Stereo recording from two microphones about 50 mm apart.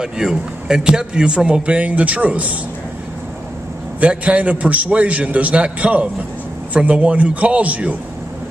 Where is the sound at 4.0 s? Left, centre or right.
Right.